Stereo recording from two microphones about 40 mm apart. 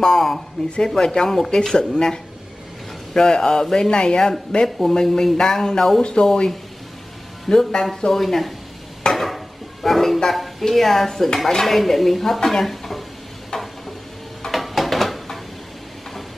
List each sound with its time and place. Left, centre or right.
0.0 s speech: centre
0.8 s speech: centre
3.2 s speech: centre
4.6 s speech: centre
4.9 s speech: centre
6.2 s speech: left
7.4 s speech: centre
9.1 s a sound: centre
10.6 s speech: centre
14.5 s a sound: centre